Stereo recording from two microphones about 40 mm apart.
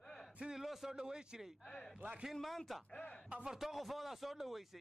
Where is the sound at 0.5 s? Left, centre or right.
Centre.